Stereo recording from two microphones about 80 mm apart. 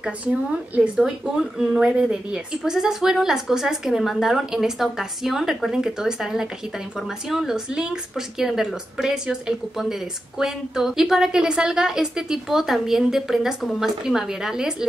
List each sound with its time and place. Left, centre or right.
0.0 s a woman's voice: centre